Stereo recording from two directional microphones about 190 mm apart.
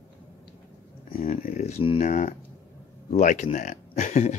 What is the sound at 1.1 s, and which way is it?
Speech, 40° left (ahead or behind).